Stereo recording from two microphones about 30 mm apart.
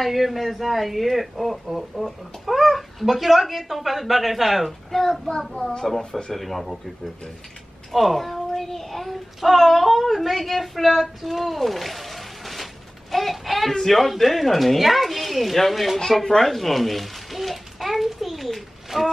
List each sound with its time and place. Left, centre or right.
0.0 s a child's voice: centre
5.6 s a child's voice: centre
6.3 s a child's voice: centre
7.9 s a child's voice: centre
11.4 s a sound: centre
13.1 s a child's voice: centre
16.3 s speech: centre
16.5 s a sound: centre
18.9 s a sound: centre